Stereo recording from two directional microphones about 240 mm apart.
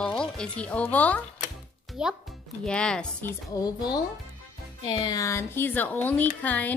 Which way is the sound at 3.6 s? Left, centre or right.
Centre.